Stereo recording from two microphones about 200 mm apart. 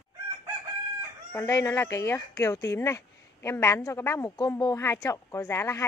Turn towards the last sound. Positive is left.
turn(degrees=15)  # may be behind; listen again after turning